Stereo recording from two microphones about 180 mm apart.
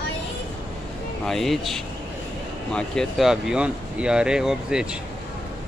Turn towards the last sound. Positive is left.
turn(degrees=-5)  # may be behind; listen again after turning